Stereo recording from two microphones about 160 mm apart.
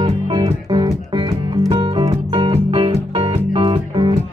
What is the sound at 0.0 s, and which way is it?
Music, 25° right (ahead or behind).